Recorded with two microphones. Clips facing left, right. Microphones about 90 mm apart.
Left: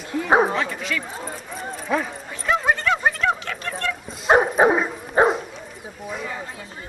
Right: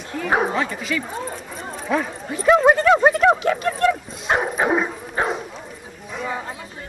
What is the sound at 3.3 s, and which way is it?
Speech, 20° right (ahead or behind).